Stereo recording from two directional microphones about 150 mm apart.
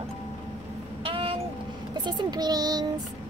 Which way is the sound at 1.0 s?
35° right (ahead or behind).